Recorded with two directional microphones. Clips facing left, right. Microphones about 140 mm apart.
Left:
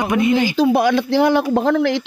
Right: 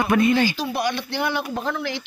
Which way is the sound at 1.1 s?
90° left.